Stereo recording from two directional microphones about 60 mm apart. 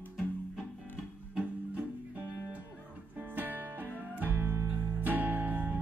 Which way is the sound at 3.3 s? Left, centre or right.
Right.